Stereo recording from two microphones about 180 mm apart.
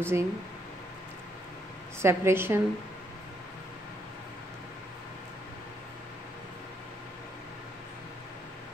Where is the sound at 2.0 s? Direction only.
15° right (ahead or behind).